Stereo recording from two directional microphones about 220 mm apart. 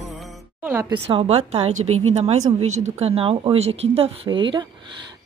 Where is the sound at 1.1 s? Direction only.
25° right (ahead or behind).